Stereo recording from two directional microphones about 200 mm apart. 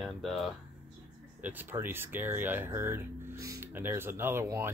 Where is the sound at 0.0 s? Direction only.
Centre (ahead or behind).